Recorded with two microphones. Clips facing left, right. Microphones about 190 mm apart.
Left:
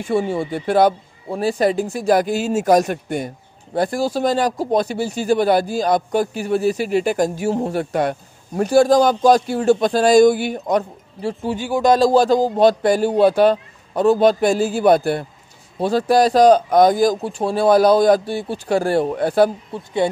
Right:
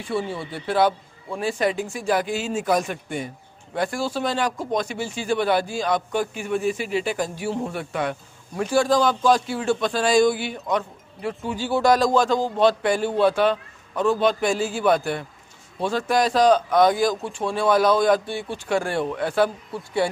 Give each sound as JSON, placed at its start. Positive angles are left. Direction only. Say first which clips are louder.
{"t": 0.0, "sound": "speech", "louder": "left 7 dB", "side_deg": 45}
{"t": 11.5, "sound": "speech", "louder": "left 2 dB", "side_deg": 15}
{"t": 11.9, "sound": "speech", "louder": "left 6 dB", "side_deg": 30}
{"t": 19.7, "sound": "speech", "louder": "left 4 dB", "side_deg": 20}